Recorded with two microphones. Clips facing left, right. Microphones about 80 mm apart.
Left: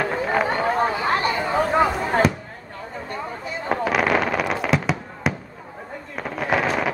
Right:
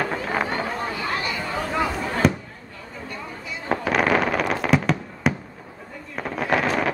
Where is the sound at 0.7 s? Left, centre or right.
Left.